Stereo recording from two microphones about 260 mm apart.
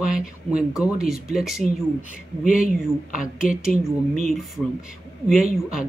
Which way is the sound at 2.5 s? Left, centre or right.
Left.